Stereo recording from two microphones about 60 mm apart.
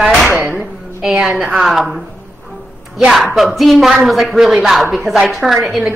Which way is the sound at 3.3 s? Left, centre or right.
Centre.